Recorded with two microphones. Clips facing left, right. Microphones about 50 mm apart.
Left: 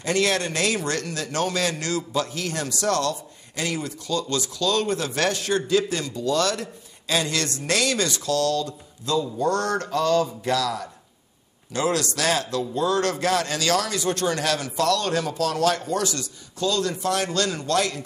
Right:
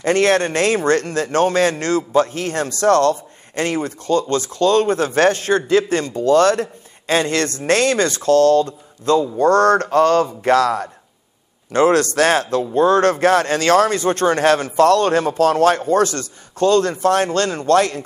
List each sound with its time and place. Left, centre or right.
0.0 s a man's voice: right